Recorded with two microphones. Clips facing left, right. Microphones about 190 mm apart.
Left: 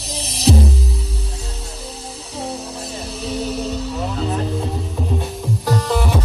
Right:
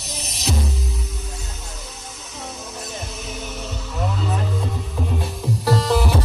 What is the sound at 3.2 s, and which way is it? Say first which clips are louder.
Music: left 9 dB; 35° left (ahead or behind).